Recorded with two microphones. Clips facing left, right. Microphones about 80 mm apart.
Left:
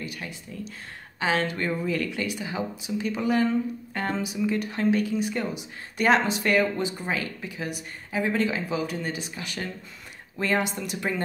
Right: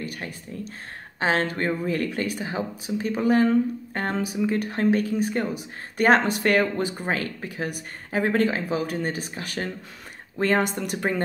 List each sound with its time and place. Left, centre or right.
0.0 s speech: right